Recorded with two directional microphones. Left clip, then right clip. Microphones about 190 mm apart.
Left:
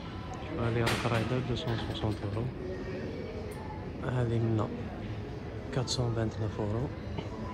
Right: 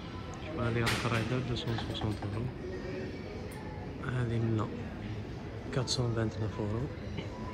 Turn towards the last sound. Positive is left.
turn(degrees=10)  # may be behind; listen again after turning